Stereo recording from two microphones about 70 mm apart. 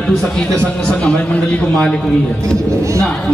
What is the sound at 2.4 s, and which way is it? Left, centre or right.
Speech, right.